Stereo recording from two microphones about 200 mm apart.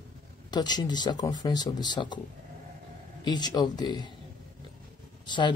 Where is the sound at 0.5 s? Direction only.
20° left (ahead or behind).